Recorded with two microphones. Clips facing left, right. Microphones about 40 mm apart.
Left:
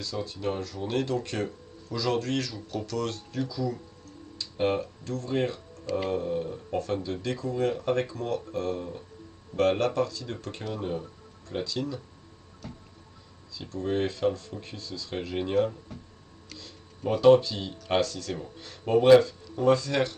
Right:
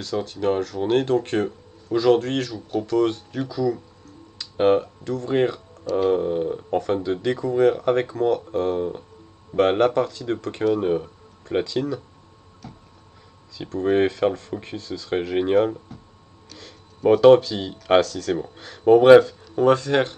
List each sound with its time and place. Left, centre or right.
0.0 s speech: right
13.5 s speech: right